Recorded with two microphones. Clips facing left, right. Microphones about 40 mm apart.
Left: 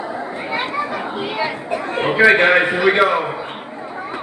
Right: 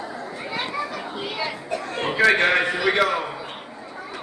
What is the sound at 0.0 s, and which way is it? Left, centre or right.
Chatter, left.